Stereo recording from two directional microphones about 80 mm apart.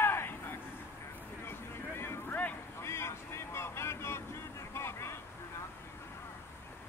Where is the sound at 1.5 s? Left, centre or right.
Left.